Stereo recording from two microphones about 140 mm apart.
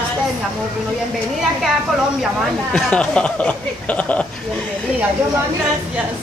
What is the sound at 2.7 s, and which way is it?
Speech, 5° left (ahead or behind).